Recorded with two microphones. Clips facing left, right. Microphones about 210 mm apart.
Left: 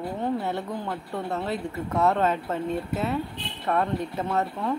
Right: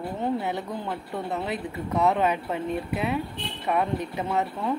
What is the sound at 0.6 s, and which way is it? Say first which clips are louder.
Speech: even; centre (ahead or behind).